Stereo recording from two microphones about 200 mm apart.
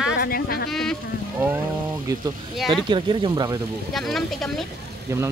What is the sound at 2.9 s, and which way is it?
Speech, 25° right (ahead or behind).